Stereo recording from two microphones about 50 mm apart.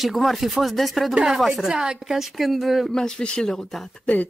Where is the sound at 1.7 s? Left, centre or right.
Centre.